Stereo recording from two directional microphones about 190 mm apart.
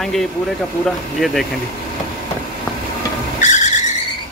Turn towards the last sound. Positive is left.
turn(degrees=40)  # may be behind; listen again after turning